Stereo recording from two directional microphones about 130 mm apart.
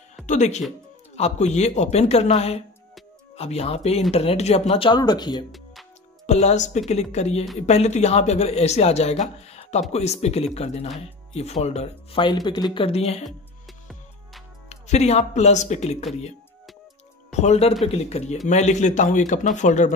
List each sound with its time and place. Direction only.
0.3 s speech: 60° left (ahead or behind); by 5.4 s 35° left (ahead or behind)
6.2 s speech: 60° left (ahead or behind)
12.2 s speech: 35° left (ahead or behind); by 13.2 s 50° left (ahead or behind)
13.2 s music: centre (ahead or behind)
14.7 s speech: 55° left (ahead or behind)
17.3 s a man's voice: 60° left (ahead or behind)